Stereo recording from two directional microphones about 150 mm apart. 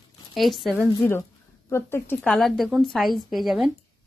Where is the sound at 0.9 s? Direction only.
20° left (ahead or behind).